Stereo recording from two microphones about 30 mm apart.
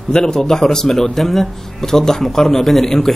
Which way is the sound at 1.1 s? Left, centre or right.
Centre.